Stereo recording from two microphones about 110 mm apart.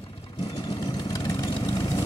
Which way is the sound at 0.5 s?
45° left (ahead or behind).